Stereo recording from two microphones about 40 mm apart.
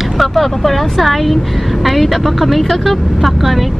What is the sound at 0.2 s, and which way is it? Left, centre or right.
Speech, centre.